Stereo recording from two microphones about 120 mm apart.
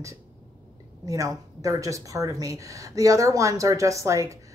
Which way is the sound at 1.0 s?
30° right (ahead or behind).